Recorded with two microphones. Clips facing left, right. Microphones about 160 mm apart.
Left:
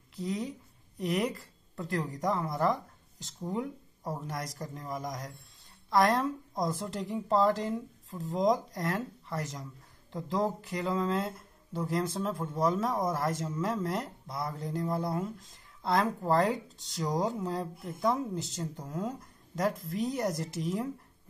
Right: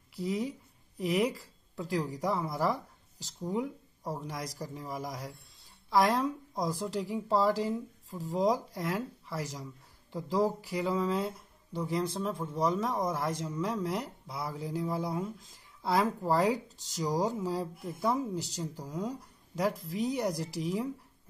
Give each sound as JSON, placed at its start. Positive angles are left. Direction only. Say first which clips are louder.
{"t": 0.1, "sound": "speech", "louder": "right 2 dB", "side_deg": -5}